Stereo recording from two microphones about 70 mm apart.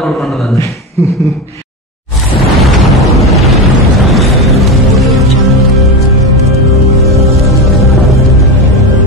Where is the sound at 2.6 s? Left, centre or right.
Centre.